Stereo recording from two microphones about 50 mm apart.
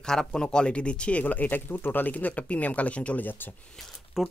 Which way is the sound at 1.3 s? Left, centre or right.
Left.